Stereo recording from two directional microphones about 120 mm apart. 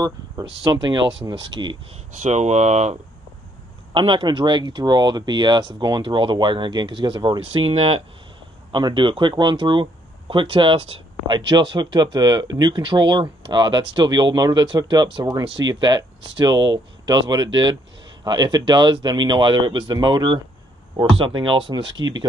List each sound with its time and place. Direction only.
0.6 s speech: 40° right (ahead or behind)
2.1 s speech: 75° right (ahead or behind)
3.9 s speech: 45° right (ahead or behind)